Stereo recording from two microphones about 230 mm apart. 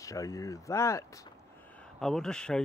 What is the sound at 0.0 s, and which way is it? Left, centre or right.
Speech, centre.